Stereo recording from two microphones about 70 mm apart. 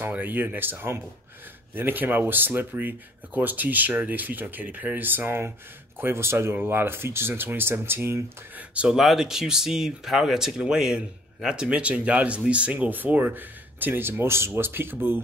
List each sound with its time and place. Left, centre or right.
0.1 s speech: right
8.9 s speech: centre; by 15.1 s right